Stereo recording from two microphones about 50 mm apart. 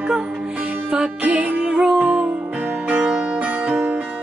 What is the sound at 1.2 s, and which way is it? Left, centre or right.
Music, right.